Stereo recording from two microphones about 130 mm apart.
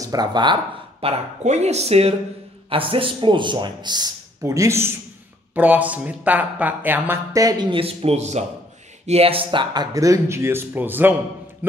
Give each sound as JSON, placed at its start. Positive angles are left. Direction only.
{"t": 0.0, "sound": "speech", "side_deg": -30}
{"t": 1.0, "sound": "speech", "side_deg": -60}
{"t": 2.7, "sound": "a man's voice", "side_deg": -45}
{"t": 7.3, "sound": "speech", "side_deg": -30}
{"t": 9.9, "sound": "speech", "side_deg": -25}